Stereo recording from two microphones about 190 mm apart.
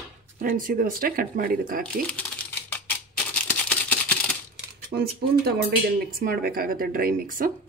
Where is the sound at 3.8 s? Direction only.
10° left (ahead or behind).